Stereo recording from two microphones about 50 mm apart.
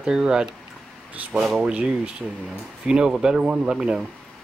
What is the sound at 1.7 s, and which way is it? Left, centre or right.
Speech, right.